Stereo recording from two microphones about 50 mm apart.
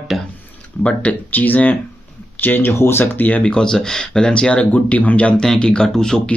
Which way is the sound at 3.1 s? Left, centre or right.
Left.